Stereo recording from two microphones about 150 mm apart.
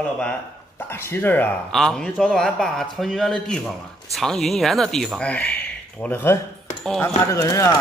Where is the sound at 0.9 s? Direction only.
15° left (ahead or behind).